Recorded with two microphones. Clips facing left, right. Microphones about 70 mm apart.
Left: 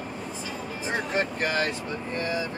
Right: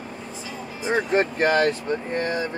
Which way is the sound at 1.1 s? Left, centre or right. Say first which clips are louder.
Right 7 dB; right.